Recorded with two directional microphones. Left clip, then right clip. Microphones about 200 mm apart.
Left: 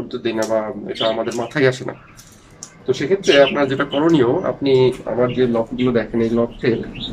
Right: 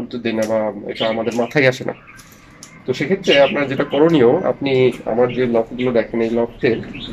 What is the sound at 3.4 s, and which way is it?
Speech, 10° right (ahead or behind).